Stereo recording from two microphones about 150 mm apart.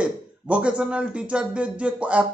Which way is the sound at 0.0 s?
10° right (ahead or behind).